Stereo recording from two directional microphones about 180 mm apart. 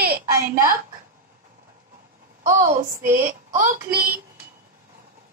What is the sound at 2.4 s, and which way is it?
Speech, 45° right (ahead or behind).